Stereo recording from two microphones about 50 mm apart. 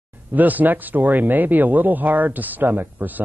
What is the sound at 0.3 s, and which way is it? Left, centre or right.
Speech, right.